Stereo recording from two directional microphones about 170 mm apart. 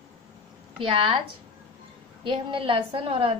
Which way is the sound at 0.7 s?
30° right (ahead or behind).